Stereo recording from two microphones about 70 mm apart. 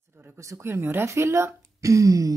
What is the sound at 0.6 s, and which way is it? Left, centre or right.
Speech, right.